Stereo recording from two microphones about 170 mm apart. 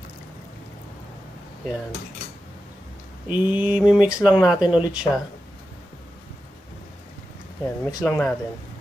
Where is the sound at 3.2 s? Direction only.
10° right (ahead or behind).